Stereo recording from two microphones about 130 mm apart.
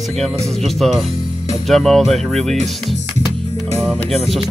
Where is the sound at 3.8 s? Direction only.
5° left (ahead or behind).